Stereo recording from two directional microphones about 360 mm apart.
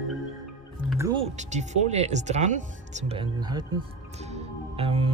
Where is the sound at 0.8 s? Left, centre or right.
Centre.